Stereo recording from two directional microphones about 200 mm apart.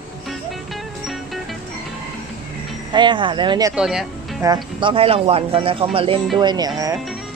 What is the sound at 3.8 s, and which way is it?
Speech, 5° right (ahead or behind).